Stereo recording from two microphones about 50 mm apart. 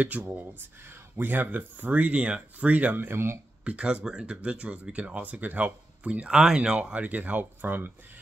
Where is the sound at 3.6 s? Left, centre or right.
Right.